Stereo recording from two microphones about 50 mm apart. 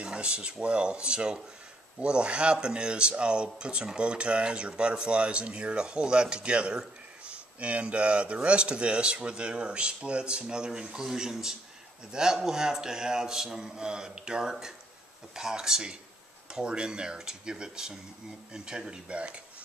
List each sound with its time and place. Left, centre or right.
0.0 s a man's voice: centre